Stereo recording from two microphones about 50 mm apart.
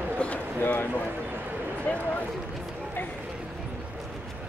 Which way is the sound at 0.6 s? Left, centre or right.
Left.